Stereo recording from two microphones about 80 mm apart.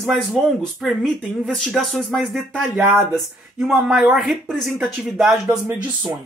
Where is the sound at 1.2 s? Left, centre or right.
Centre.